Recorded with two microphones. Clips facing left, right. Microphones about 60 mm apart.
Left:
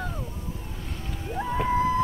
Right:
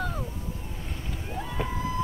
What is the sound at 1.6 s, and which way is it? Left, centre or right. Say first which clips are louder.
Music: left 9 dB; left.